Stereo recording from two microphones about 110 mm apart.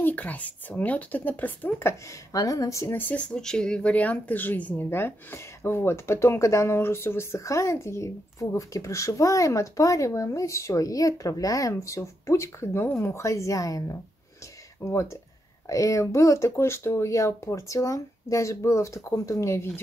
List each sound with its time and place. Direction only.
0.0 s speech: 15° left (ahead or behind)
2.3 s speech: 35° left (ahead or behind); by 3.3 s 15° left (ahead or behind)
3.3 s speech: 5° left (ahead or behind); by 19.8 s 25° left (ahead or behind)